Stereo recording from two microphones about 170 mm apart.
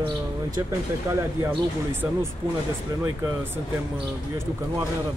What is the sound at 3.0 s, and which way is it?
Speech, 20° right (ahead or behind).